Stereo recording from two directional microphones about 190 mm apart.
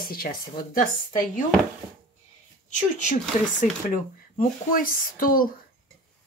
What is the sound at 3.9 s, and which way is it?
Speech, 45° left (ahead or behind).